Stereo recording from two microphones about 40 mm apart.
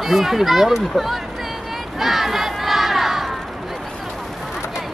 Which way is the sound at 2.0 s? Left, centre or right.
Centre.